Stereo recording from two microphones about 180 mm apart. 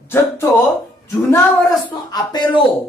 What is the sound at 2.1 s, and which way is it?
Speech, 20° left (ahead or behind).